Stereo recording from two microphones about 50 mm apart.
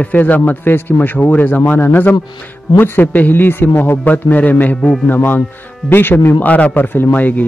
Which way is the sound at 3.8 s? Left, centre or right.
Left.